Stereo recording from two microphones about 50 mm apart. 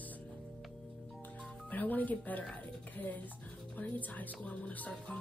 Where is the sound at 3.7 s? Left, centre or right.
Left.